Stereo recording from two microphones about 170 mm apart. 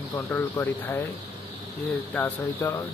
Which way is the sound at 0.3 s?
15° left (ahead or behind).